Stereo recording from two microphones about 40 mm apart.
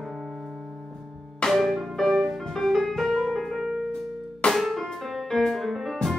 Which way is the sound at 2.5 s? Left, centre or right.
Centre.